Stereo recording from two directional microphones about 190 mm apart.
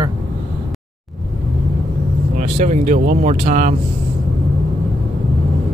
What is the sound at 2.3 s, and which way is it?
Speech, 40° right (ahead or behind).